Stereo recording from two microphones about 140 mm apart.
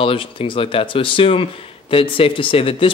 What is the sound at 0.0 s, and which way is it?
Speech, 40° left (ahead or behind).